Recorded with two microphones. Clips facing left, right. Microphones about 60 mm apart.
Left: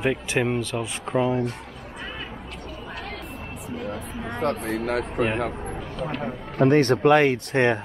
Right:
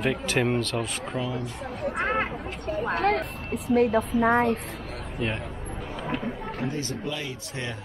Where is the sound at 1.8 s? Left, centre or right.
Right.